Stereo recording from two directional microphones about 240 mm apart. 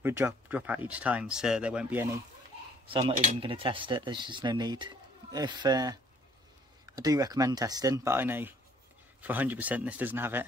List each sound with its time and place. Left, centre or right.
0.0 s speech: centre
2.9 s speech: right